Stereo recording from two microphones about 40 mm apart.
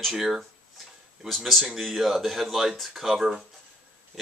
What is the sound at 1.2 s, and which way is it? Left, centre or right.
Speech, centre.